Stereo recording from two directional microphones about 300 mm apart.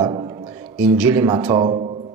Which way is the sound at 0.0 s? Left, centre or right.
Centre.